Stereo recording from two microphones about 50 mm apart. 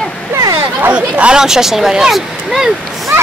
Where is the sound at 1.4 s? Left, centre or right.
Centre.